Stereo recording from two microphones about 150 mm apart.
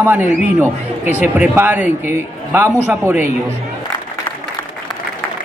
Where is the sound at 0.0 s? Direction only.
15° right (ahead or behind).